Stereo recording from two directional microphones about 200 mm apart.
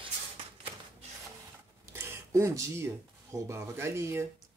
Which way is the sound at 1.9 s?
15° right (ahead or behind).